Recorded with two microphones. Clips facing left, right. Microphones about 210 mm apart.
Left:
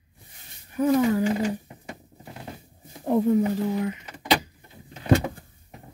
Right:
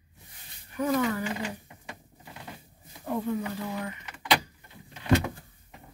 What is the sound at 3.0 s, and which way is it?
Speech, 35° left (ahead or behind).